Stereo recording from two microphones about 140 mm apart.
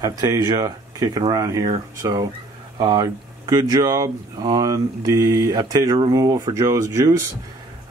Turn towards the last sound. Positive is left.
turn(degrees=-20)  # may be behind; listen again after turning